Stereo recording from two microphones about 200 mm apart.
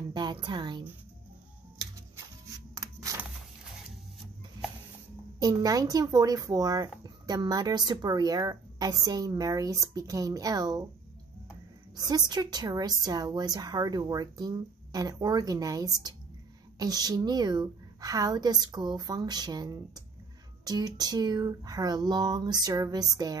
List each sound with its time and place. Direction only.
0.1 s a woman's voice: 20° right (ahead or behind)
2.7 s a sound: 15° right (ahead or behind)
5.4 s speech: 20° right (ahead or behind)
12.1 s speech: 20° right (ahead or behind)